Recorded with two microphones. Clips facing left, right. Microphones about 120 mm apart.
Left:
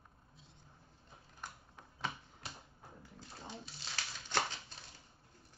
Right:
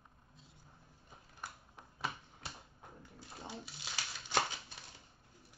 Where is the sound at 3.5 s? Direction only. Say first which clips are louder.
Even; 10° right (ahead or behind).